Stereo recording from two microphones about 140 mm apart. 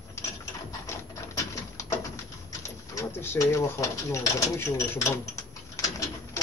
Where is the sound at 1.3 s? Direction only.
20° left (ahead or behind).